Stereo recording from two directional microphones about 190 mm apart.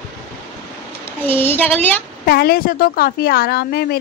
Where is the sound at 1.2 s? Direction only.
10° left (ahead or behind).